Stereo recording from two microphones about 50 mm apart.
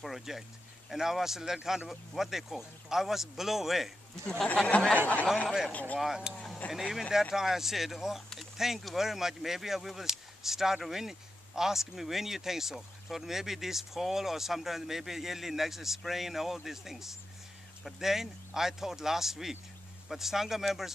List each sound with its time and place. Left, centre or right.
0.0 s speech: centre
4.9 s speech: left
5.9 s speech: centre